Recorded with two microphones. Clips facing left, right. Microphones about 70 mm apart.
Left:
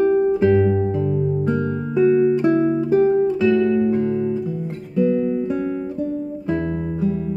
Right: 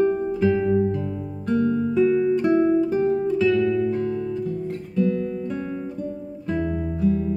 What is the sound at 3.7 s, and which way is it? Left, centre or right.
Music, centre.